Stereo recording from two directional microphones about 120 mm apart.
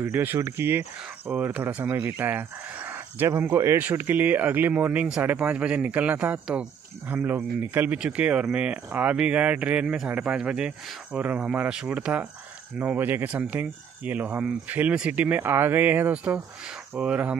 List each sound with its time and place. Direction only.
0.0 s speech: 20° right (ahead or behind)